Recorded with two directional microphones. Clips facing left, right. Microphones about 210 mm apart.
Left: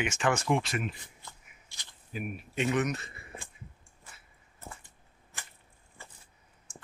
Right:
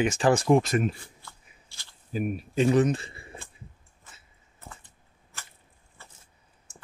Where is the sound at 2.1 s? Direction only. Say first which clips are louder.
Right 8 dB; 35° right (ahead or behind).